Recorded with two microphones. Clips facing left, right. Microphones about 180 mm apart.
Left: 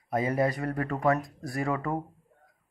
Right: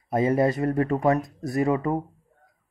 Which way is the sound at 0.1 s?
25° right (ahead or behind).